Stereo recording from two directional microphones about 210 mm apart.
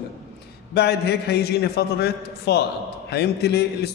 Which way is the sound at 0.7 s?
50° left (ahead or behind).